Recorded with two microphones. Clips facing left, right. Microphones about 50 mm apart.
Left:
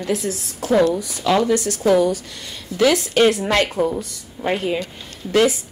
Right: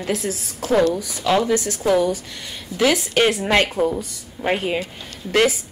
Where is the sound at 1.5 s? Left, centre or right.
Right.